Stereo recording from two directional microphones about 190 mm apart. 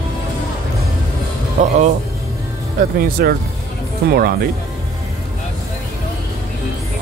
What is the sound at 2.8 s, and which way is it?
Speech, 45° right (ahead or behind).